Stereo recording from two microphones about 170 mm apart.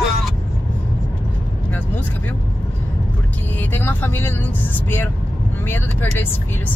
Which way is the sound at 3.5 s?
10° left (ahead or behind).